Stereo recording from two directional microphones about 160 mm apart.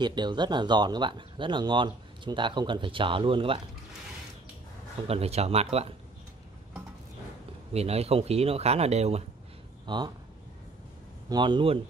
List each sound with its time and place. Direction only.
0.0 s speech: 25° right (ahead or behind)
5.0 s speech: 40° right (ahead or behind)
7.7 s speech: 40° right (ahead or behind)
9.8 s speech: 30° right (ahead or behind)
11.2 s speech: 30° right (ahead or behind)